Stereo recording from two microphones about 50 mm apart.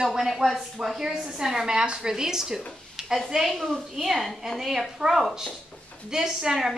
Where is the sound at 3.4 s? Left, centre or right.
Centre.